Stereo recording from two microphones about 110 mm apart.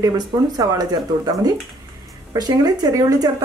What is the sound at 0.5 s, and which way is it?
A woman's voice, 40° right (ahead or behind).